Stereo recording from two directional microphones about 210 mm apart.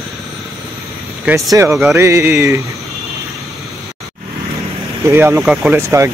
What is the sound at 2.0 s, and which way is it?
Speech, 15° right (ahead or behind).